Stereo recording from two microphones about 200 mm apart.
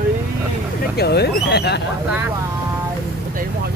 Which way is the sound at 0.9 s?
55° left (ahead or behind).